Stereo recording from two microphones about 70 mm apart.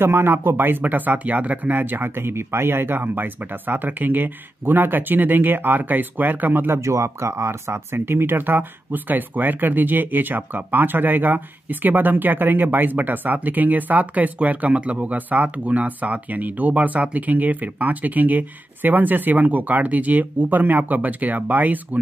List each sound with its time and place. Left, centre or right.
0.0 s speech: right
6.8 s speech: right